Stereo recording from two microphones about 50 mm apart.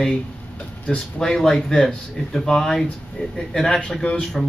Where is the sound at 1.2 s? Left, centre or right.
Centre.